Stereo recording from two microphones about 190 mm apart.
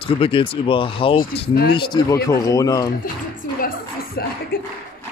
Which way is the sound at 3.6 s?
50° left (ahead or behind).